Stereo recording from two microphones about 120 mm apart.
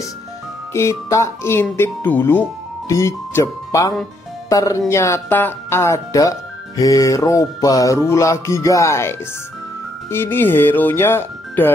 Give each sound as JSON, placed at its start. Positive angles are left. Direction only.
{"t": 0.7, "sound": "music", "side_deg": 25}
{"t": 2.9, "sound": "speech", "side_deg": 25}
{"t": 4.5, "sound": "music", "side_deg": 30}
{"t": 10.1, "sound": "speech", "side_deg": 20}